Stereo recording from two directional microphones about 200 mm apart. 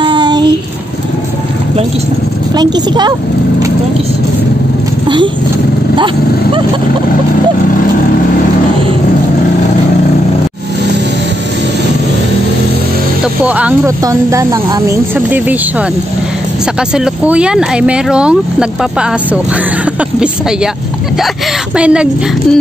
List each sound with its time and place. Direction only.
0.0 s child singing: 25° right (ahead or behind)
2.5 s speech: 20° right (ahead or behind)
5.0 s speech: 25° right (ahead or behind)
13.5 s speech: 5° right (ahead or behind)
14.0 s speech: 15° right (ahead or behind)
16.9 s speech: 5° right (ahead or behind)
21.7 s speech: 5° right (ahead or behind)